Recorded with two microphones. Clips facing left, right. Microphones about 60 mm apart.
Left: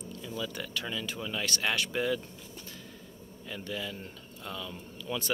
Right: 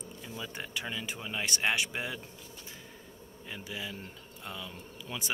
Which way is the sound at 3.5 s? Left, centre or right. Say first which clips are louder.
Left 3 dB; centre.